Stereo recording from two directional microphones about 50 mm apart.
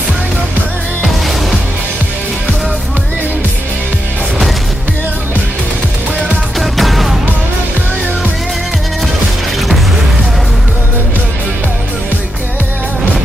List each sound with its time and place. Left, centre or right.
6.6 s music: centre